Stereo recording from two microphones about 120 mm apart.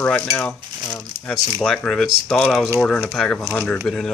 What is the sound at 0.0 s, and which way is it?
Cutlery, 10° left (ahead or behind).